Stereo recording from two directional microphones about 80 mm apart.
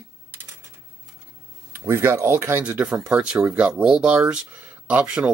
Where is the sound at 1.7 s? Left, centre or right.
Right.